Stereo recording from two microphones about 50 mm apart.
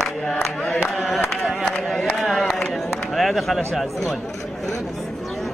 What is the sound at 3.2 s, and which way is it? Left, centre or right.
Speech, centre.